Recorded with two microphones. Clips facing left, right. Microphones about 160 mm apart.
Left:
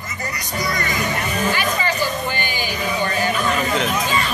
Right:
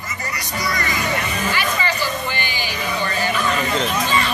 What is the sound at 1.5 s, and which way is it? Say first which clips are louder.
Music: left 1 dB; 45° left (ahead or behind).